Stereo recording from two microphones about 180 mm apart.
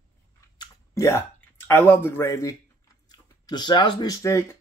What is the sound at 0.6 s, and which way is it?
Speech, 15° left (ahead or behind).